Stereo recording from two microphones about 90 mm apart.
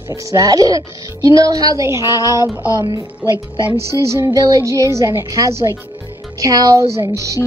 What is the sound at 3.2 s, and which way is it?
Speech, 15° right (ahead or behind).